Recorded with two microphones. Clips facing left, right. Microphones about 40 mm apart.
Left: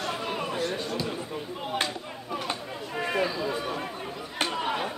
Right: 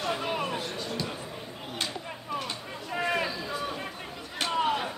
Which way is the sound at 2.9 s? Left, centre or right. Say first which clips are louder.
Left 1 dB; centre.